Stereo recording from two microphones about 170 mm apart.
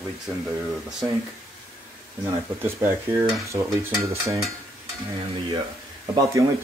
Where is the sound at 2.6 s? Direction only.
15° right (ahead or behind).